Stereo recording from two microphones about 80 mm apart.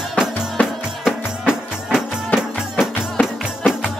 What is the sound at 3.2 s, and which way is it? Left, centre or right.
Music, centre.